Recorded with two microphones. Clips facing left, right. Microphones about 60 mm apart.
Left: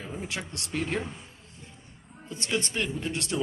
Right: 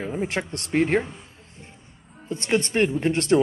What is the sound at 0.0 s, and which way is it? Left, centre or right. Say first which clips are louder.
Speech: right 9 dB; right.